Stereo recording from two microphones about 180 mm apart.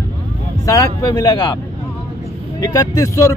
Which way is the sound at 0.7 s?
20° left (ahead or behind).